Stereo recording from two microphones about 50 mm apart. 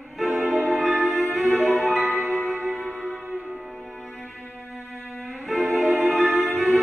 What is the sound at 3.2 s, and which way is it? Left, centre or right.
Music, right.